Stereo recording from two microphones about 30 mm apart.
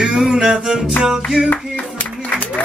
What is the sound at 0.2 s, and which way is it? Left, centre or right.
Music, right.